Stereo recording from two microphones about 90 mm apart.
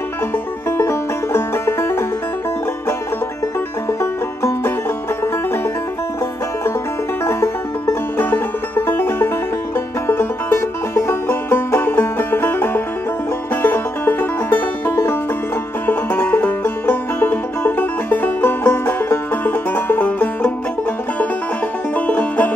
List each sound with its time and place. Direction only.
0.7 s music: 30° left (ahead or behind)
4.0 s music: 30° left (ahead or behind)
7.2 s music: 30° left (ahead or behind)
21.9 s music: 15° left (ahead or behind)